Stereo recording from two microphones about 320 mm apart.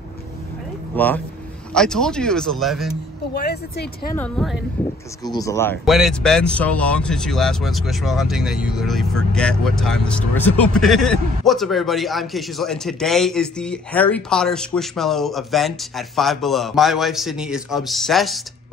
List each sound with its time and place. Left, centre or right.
0.9 s speech: centre
3.3 s a woman's voice: left
4.1 s speech: centre